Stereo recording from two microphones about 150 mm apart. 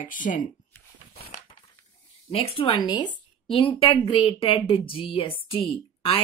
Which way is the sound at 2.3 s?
35° left (ahead or behind).